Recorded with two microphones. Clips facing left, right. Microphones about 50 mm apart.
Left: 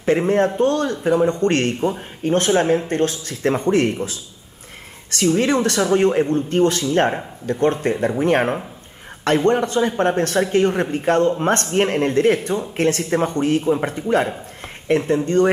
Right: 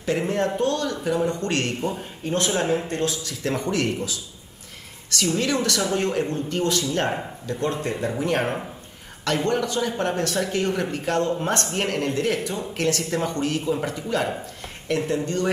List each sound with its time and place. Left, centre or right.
0.6 s speech: left